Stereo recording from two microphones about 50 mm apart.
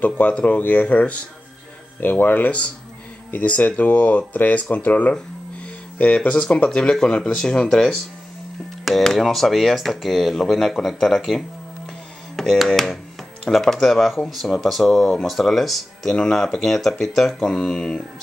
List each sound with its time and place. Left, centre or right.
0.3 s speech: left
2.0 s speech: left
6.1 s speech: centre
8.8 s speech: centre
12.6 s speech: centre
16.2 s speech: centre